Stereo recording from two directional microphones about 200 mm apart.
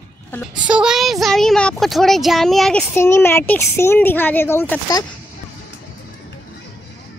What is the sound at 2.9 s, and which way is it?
Speech, 10° left (ahead or behind).